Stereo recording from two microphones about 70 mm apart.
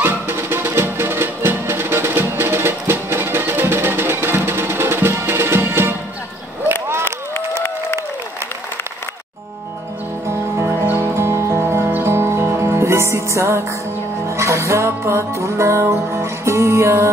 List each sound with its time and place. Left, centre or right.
0.0 s music: right
10.2 s music: right